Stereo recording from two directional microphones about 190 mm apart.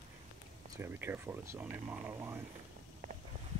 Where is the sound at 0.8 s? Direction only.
10° right (ahead or behind).